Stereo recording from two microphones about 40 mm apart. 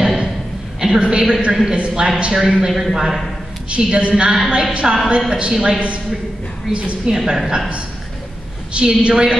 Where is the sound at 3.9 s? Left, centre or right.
Right.